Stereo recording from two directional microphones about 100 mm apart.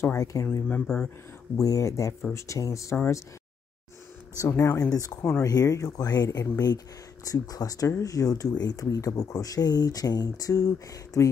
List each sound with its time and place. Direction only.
0.0 s speech: 30° left (ahead or behind)
4.4 s speech: 30° left (ahead or behind)